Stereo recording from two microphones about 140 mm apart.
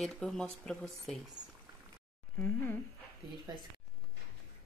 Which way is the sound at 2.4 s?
10° left (ahead or behind).